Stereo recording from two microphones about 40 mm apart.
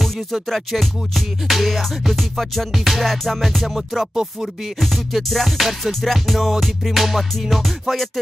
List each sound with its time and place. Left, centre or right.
0.0 s music: centre
4.1 s rapping: centre
4.7 s music: centre